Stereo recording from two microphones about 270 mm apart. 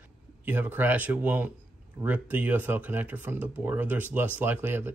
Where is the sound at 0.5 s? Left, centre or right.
Centre.